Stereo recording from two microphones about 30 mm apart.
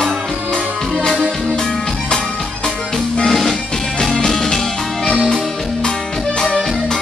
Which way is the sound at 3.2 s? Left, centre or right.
Centre.